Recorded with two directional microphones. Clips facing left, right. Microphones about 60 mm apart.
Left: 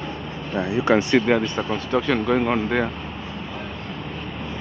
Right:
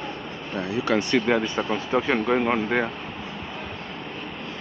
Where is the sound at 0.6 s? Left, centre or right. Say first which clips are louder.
Left 5 dB; left.